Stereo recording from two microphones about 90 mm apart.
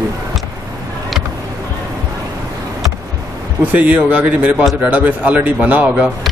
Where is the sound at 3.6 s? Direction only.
15° right (ahead or behind).